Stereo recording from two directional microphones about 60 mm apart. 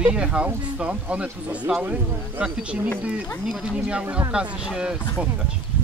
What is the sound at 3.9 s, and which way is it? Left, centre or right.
Speech, centre.